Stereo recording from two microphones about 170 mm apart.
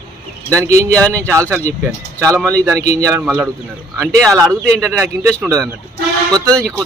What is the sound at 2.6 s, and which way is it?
Speech, 20° right (ahead or behind).